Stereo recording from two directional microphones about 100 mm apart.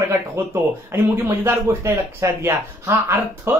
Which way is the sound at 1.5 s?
25° right (ahead or behind).